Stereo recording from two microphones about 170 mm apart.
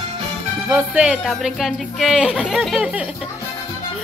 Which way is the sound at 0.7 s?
5° right (ahead or behind).